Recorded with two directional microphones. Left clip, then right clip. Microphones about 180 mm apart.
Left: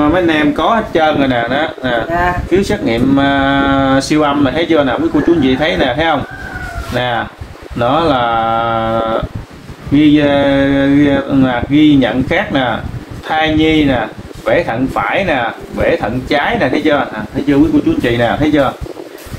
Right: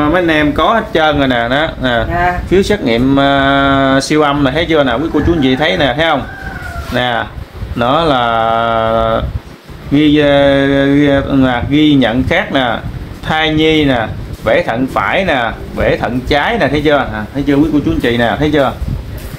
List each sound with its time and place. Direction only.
0.0 s speech: 50° right (ahead or behind)
18.0 s speech: 55° right (ahead or behind)